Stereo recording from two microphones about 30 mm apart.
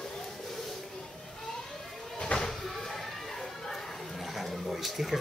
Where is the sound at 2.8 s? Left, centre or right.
Centre.